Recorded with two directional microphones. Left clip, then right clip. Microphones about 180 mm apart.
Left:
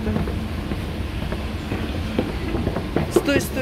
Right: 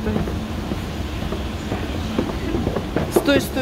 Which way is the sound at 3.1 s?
10° right (ahead or behind).